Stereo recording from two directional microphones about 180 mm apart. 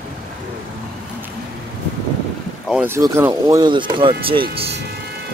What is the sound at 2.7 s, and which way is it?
Boat, 5° right (ahead or behind).